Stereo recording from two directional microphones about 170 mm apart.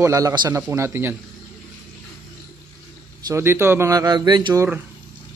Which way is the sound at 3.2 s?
15° right (ahead or behind).